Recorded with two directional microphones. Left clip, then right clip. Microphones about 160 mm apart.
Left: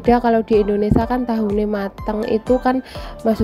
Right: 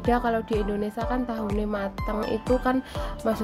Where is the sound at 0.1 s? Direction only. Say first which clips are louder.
Left 10 dB; 30° left (ahead or behind).